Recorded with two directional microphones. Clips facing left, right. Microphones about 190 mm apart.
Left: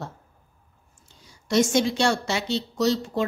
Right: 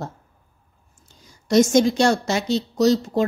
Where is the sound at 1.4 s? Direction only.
40° right (ahead or behind).